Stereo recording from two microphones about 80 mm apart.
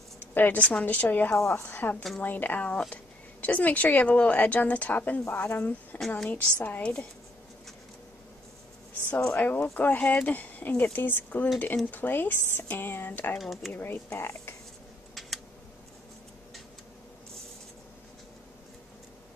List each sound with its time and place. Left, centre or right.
0.2 s a woman's voice: left
1.3 s a woman's voice: left
1.6 s speech: left
5.9 s a woman's voice: centre
6.3 s a woman's voice: centre
9.3 s speech: left
13.4 s a woman's voice: centre
13.7 s speech: left
15.1 s a sound: centre